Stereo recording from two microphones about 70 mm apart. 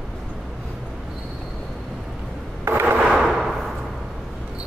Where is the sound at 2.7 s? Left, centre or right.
Right.